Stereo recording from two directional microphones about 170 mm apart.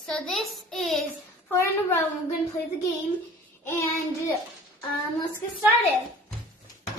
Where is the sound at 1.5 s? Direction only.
15° left (ahead or behind).